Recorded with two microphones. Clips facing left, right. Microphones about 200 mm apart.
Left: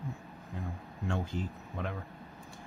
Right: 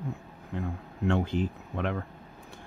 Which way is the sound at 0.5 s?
70° right (ahead or behind).